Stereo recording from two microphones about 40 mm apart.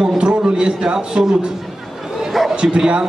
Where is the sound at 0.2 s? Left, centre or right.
Right.